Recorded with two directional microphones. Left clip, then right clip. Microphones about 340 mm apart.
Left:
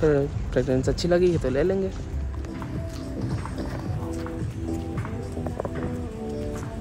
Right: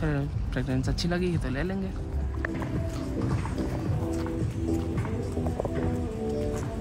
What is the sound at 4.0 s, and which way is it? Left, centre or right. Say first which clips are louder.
Music: right 2 dB; centre.